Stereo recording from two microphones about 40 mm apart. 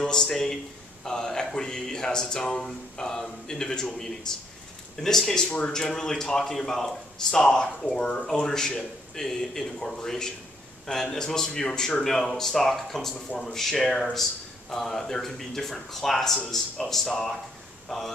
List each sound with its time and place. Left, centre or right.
0.0 s speech: centre
12.0 s speech: centre
17.8 s speech: centre